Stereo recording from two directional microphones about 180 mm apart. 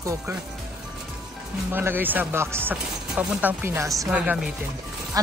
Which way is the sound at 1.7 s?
10° right (ahead or behind).